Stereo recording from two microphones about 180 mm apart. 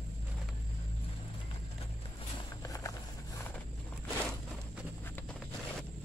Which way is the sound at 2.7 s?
20° left (ahead or behind).